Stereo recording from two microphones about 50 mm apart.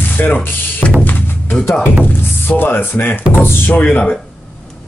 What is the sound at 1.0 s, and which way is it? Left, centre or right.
Music, left.